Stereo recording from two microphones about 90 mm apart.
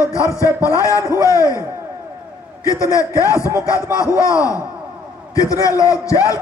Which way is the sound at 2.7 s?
35° left (ahead or behind).